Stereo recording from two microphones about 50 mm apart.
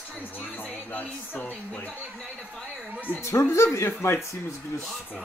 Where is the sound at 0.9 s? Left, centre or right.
Left.